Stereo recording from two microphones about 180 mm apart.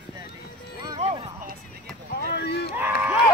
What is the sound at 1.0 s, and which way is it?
Speech, 35° right (ahead or behind).